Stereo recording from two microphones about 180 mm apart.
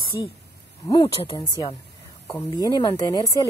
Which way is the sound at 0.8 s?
25° left (ahead or behind).